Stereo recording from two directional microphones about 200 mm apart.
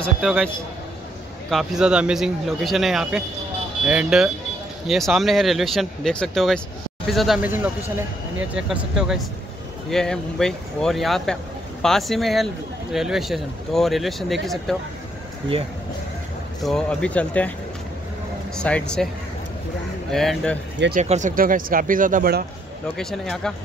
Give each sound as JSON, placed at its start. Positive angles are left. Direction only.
{"t": 0.0, "sound": "speech", "side_deg": 0}
{"t": 1.5, "sound": "speech", "side_deg": 0}
{"t": 16.6, "sound": "speech", "side_deg": 5}
{"t": 18.6, "sound": "speech", "side_deg": 5}
{"t": 20.1, "sound": "speech", "side_deg": 0}
{"t": 20.9, "sound": "speech", "side_deg": -35}
{"t": 22.9, "sound": "speech", "side_deg": 0}